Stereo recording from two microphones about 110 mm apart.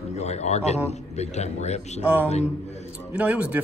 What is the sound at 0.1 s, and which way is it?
A man's voice, 90° left.